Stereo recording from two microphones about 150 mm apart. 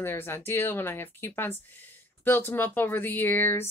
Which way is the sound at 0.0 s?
15° left (ahead or behind).